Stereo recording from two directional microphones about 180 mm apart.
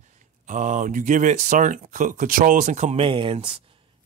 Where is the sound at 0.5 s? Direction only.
45° right (ahead or behind).